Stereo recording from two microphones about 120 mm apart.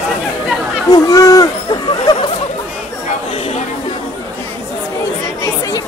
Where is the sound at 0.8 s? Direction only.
30° left (ahead or behind).